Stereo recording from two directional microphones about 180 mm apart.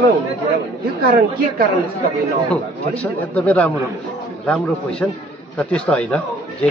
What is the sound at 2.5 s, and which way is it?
A man's voice, 5° left (ahead or behind).